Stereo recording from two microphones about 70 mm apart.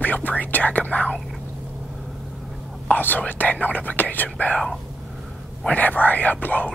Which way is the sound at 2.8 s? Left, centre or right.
Left.